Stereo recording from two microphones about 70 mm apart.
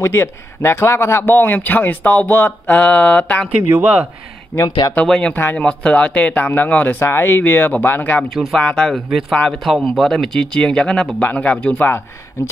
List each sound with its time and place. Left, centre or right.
0.0 s speech: left
2.8 s speech: centre
3.8 s speech: centre
4.5 s speech: left
5.0 s speech: centre
5.3 s speech: left
5.6 s speech: centre
7.1 s speech: left
8.2 s speech: centre